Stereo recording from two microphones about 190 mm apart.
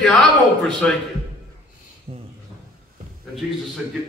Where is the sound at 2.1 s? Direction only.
30° right (ahead or behind).